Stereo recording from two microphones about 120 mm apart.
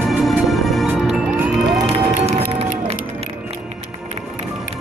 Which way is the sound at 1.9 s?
60° right (ahead or behind).